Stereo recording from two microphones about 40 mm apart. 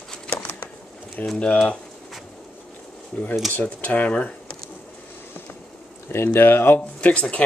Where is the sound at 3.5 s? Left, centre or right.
Left.